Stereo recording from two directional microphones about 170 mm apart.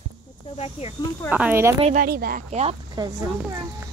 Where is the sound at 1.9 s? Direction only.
60° right (ahead or behind).